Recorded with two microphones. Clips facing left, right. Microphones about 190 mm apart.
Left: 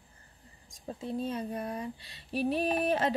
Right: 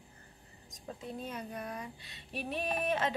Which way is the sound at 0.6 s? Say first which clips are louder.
Left 5 dB; 30° left (ahead or behind).